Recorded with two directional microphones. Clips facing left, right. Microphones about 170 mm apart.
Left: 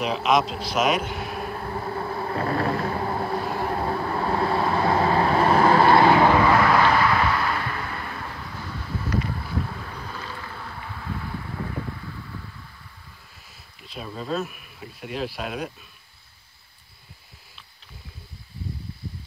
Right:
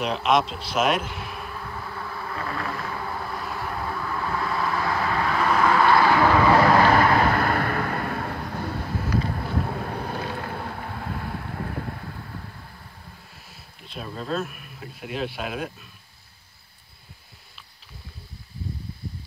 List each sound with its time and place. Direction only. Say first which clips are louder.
0.0 s speech: even; centre (ahead or behind)
1.2 s vehicle: left 5 dB; 45° left (ahead or behind); by 6.2 s 25° left (ahead or behind)
6.8 s vehicle: right 2 dB; 45° right (ahead or behind)
9.4 s boat: right 3 dB; 55° right (ahead or behind)
13.7 s speech: even; centre (ahead or behind)